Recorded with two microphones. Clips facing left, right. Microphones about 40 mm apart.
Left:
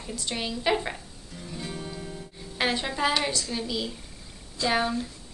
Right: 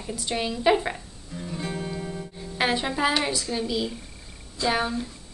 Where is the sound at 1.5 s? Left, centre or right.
Centre.